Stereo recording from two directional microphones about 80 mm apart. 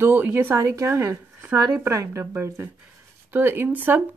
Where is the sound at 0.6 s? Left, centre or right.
Right.